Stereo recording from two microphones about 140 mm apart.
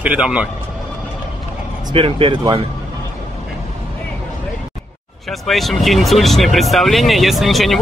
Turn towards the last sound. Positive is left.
turn(degrees=0)  # may be behind; listen again after turning